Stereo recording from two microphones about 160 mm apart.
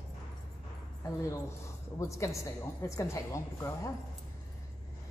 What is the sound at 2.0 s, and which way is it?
A woman's voice, 20° left (ahead or behind).